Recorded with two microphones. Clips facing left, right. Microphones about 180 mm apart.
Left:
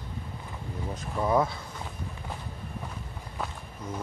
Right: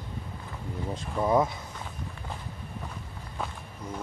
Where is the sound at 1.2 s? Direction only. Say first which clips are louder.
Right 1 dB; 20° right (ahead or behind).